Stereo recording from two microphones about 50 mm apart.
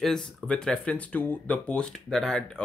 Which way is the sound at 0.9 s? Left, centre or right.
Left.